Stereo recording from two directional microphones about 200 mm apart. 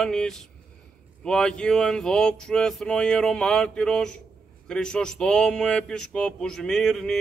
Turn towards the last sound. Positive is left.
turn(degrees=5)  # may be behind; listen again after turning